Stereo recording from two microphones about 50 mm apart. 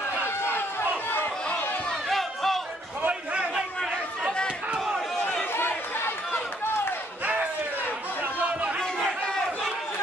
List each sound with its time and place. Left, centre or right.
0.4 s run: left
2.0 s crowd: centre
4.7 s crowd: centre
5.5 s chatter: left
8.2 s chatter: right